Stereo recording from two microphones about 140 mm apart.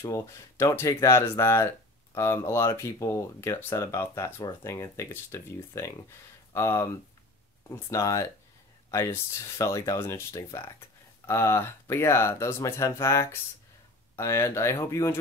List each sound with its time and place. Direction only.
0.0 s speech: 20° left (ahead or behind)